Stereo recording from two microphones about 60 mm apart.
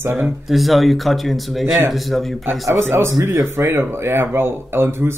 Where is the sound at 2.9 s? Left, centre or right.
Right.